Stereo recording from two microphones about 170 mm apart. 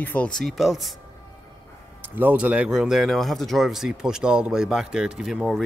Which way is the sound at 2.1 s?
10° right (ahead or behind).